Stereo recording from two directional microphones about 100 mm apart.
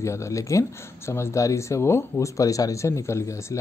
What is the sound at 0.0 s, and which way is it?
Speech, 30° left (ahead or behind).